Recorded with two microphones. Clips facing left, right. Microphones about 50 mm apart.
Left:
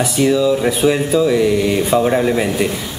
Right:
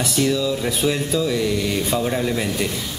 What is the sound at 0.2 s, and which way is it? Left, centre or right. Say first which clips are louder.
A man's voice: left 7 dB; centre.